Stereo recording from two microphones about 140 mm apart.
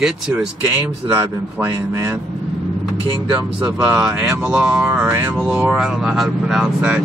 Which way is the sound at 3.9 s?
5° right (ahead or behind).